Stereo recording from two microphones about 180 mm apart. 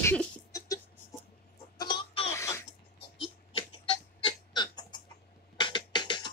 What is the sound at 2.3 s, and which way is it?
Throat clearing, 15° left (ahead or behind).